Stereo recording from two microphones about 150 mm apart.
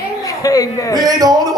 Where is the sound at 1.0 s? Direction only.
25° right (ahead or behind).